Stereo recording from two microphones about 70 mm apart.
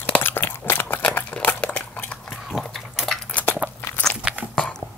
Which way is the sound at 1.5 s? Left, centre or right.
Centre.